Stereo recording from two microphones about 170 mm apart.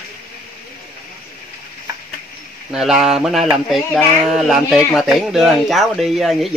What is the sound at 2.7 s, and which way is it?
Speech, centre (ahead or behind).